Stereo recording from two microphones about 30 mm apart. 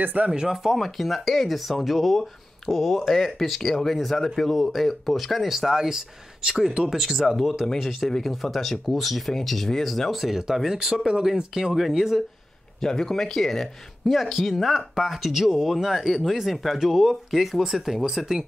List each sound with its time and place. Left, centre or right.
0.0 s speech: right
0.3 s speech: centre
0.7 s speech: centre
10.1 s speech: centre
12.8 s speech: centre
14.3 s speech: centre